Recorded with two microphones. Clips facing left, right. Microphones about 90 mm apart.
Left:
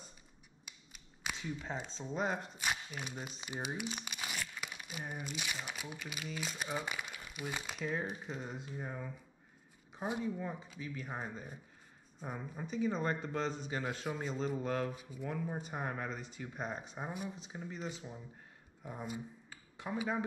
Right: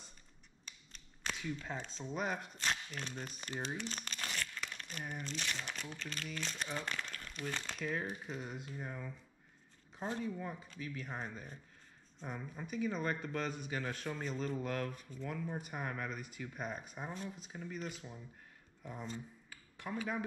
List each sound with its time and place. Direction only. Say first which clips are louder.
0.7 s scissors: right 1 dB; 10° left (ahead or behind)
1.9 s speech: left 2 dB; 25° left (ahead or behind)
2.5 s speech: left 1 dB; 10° left (ahead or behind)
8.1 s speech: left 1 dB; centre (ahead or behind)
8.7 s a man's voice: left 2 dB; 15° left (ahead or behind)
13.8 s a man's voice: left 2 dB; 15° left (ahead or behind); by 16.8 s 35° left (ahead or behind)
17.0 s a man's voice: left 3 dB; 15° left (ahead or behind)
18.9 s a man's voice: left 2 dB; 10° left (ahead or behind)